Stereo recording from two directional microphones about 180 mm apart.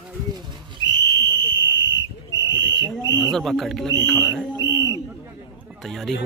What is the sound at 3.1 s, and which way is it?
Speech, 25° right (ahead or behind).